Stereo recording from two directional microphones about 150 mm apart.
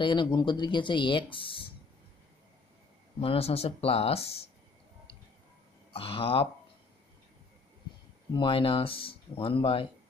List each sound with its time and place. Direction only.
0.0 s speech: 30° left (ahead or behind)
3.2 s speech: 40° left (ahead or behind)
5.9 s speech: 35° left (ahead or behind)
8.3 s speech: 35° left (ahead or behind)